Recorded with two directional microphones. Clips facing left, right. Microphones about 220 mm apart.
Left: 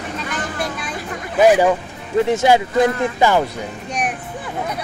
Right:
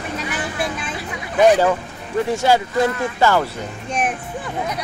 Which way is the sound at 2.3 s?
20° left (ahead or behind).